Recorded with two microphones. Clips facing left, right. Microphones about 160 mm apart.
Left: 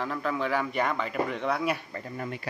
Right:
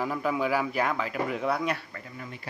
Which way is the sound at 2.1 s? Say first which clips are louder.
Left 7 dB; 55° left (ahead or behind).